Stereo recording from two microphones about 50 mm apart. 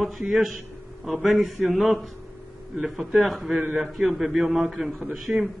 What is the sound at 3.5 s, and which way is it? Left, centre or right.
Speech, right.